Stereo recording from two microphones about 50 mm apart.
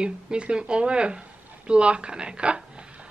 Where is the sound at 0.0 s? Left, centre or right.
Centre.